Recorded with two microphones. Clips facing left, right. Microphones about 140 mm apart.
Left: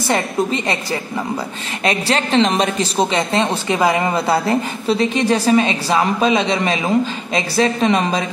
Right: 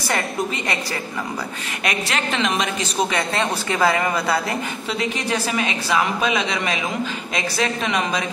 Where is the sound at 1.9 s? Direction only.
30° left (ahead or behind).